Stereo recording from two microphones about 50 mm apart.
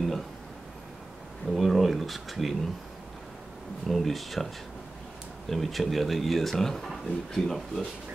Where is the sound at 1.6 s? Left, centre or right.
Centre.